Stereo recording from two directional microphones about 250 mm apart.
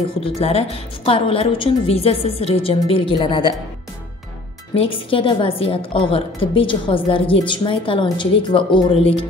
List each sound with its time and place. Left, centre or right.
0.4 s a woman's voice: left
4.7 s a woman's voice: left